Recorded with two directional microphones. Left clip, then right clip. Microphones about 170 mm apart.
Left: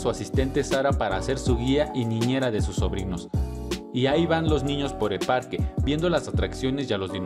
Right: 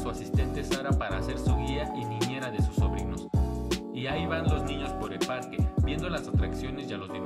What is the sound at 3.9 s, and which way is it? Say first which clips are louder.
Music: left 15 dB; 45° left (ahead or behind).